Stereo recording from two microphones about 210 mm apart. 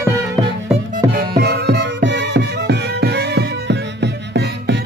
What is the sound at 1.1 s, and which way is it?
Music, 50° right (ahead or behind).